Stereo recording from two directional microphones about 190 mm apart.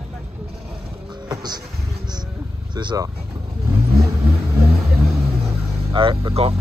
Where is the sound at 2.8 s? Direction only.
25° right (ahead or behind).